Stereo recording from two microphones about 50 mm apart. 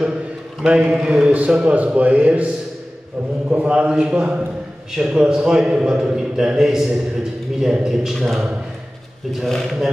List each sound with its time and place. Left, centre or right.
0.6 s a man's voice: centre
1.2 s speech: right
4.9 s a man's voice: centre